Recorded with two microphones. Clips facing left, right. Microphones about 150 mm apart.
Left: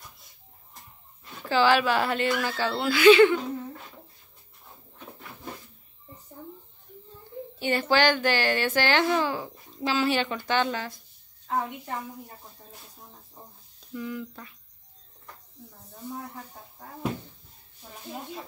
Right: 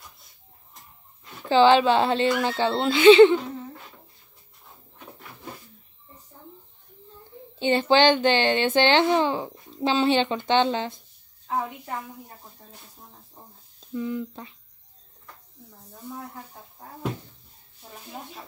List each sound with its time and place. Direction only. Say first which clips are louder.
1.5 s a child's voice: right 5 dB; 25° right (ahead or behind)
7.5 s a child's voice: right 4 dB; 25° right (ahead or behind)
11.4 s a woman's voice: right 1 dB; 5° right (ahead or behind)
13.7 s speech: right 5 dB; 25° right (ahead or behind)